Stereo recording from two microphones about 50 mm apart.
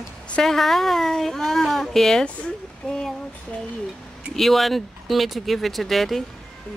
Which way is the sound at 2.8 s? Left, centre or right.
Left.